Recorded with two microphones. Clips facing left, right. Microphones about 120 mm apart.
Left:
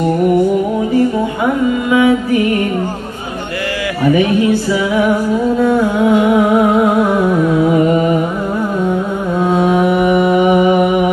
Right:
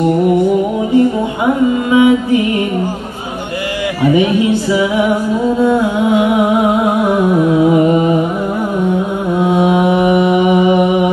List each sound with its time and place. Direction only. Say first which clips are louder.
0.9 s music: right 3 dB; 20° right (ahead or behind)
4.1 s music: left 1 dB; 20° right (ahead or behind)
9.4 s mantra: even; 15° right (ahead or behind)